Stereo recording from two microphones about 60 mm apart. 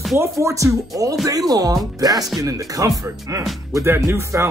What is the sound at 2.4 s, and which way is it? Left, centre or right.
Speech, right.